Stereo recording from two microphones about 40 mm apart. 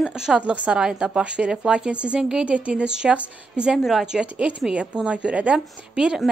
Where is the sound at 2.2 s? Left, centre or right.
Centre.